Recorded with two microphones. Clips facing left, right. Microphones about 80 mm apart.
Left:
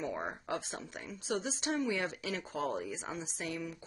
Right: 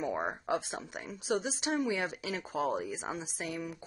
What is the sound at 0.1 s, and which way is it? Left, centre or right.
Speech, centre.